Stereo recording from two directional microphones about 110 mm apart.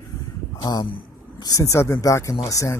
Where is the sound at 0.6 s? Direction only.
40° left (ahead or behind).